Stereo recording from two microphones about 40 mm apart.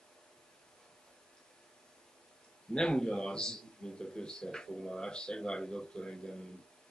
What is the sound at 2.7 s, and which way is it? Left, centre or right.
A man's voice, centre.